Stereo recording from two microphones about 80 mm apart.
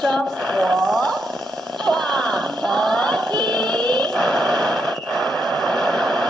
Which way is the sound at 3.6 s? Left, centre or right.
Right.